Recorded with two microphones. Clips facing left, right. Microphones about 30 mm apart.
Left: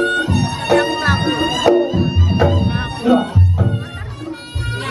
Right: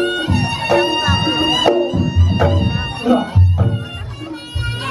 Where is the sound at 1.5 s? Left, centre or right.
Centre.